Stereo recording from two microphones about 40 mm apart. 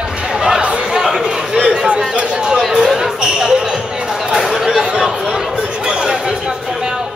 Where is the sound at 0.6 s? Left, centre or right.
Right.